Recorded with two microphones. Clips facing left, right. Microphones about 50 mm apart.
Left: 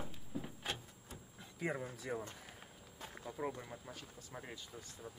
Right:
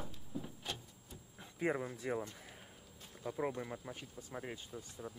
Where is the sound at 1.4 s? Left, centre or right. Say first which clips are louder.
Right 4 dB; right.